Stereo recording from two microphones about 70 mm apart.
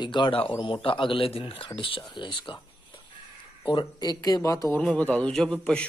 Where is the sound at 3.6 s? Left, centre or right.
Left.